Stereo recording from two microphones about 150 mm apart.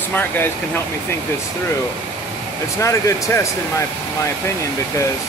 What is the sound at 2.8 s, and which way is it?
Speech, 20° left (ahead or behind).